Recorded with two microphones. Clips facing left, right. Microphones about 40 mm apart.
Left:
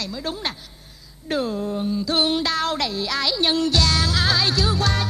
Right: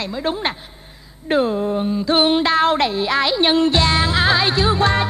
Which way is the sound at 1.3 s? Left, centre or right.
Right.